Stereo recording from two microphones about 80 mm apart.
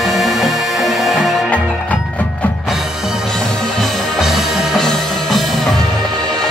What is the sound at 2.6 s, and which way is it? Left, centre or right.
Music, centre.